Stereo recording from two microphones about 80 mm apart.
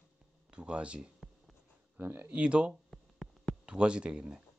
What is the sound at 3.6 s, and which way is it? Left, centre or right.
Speech, centre.